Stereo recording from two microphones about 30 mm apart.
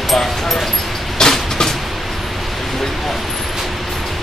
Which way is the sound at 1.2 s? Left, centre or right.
Left.